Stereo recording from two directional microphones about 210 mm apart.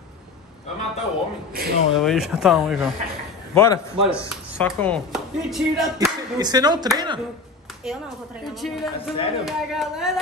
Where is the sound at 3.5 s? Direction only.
15° left (ahead or behind); by 5.9 s centre (ahead or behind).